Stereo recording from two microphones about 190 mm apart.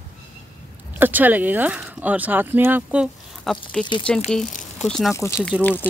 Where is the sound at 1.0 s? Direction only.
10° right (ahead or behind).